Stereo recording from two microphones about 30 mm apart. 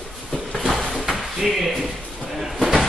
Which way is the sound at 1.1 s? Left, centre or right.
Centre.